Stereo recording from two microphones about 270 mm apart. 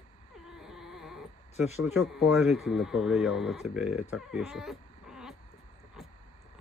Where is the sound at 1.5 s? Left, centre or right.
Left.